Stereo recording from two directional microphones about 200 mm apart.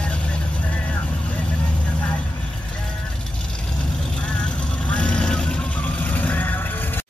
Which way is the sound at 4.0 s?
5° left (ahead or behind).